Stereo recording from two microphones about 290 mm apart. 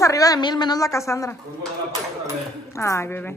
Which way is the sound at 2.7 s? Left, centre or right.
Centre.